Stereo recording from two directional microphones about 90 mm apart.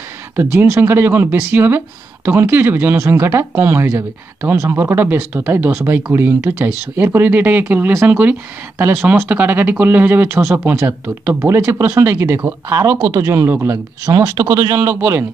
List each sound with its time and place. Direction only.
0.7 s a man's voice: 25° right (ahead or behind)
14.0 s speech: 50° right (ahead or behind)
14.9 s speech: 25° right (ahead or behind)